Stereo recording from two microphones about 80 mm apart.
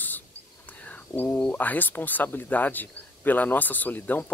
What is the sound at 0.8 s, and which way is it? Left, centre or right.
Speech, left.